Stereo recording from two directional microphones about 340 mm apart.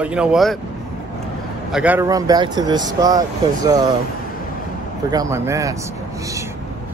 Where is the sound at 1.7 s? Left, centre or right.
Centre.